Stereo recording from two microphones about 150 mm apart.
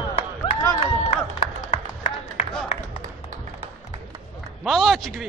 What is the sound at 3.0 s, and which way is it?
Music, 55° right (ahead or behind).